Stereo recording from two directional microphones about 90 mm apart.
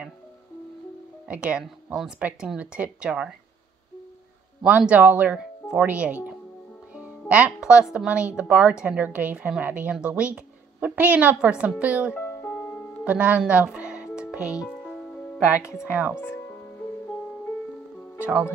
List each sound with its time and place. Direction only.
1.2 s speech: 10° right (ahead or behind)
4.6 s a woman's voice: 15° right (ahead or behind)
12.2 s music: 25° left (ahead or behind)
13.0 s music: 15° right (ahead or behind)
15.9 s speech: 20° right (ahead or behind)
16.2 s speech: 25° left (ahead or behind)